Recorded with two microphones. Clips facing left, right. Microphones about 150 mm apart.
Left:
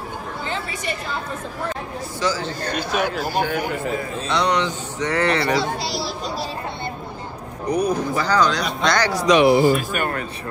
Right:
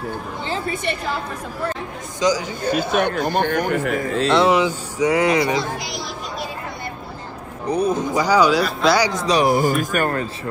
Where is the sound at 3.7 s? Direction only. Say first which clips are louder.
Right 4 dB; 75° right (ahead or behind).